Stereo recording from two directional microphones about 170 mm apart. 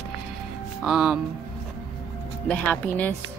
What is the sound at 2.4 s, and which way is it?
Speech, 10° left (ahead or behind).